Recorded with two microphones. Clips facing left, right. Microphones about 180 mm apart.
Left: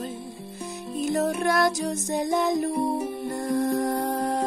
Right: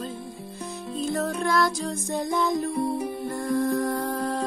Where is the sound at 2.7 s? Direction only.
40° left (ahead or behind).